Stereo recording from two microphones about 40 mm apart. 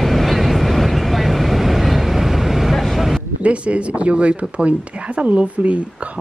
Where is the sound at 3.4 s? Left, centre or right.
Right.